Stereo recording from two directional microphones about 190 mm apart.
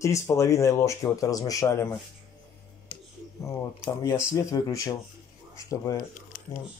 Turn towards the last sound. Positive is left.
turn(degrees=15)  # may be behind; listen again after turning